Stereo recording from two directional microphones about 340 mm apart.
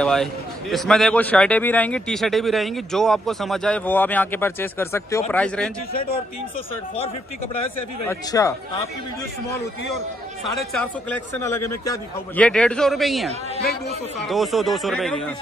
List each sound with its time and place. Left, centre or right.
0.0 s a man's voice: centre
5.9 s speech: left
8.1 s speech: centre
10.7 s a man's voice: centre
13.6 s speech: left
14.2 s a man's voice: centre